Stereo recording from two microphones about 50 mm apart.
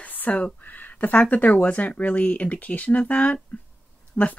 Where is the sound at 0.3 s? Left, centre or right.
Left.